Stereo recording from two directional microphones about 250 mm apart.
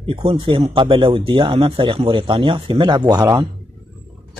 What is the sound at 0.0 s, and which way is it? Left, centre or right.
Speech, right.